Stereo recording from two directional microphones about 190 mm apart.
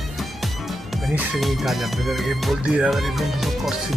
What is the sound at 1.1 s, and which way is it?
Speech, centre (ahead or behind).